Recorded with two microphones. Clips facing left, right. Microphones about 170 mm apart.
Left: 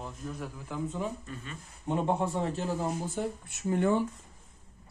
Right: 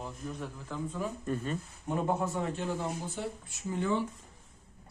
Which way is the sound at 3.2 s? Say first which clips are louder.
Left 4 dB; 60° left (ahead or behind).